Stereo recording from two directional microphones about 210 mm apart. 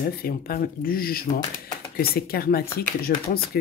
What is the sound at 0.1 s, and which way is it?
Speech, 45° left (ahead or behind).